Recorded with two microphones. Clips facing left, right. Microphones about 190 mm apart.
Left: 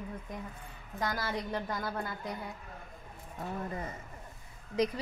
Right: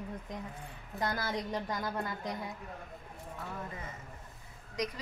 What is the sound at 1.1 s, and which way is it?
Speech, 15° right (ahead or behind).